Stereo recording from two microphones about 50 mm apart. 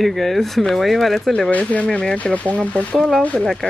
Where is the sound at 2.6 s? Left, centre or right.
Left.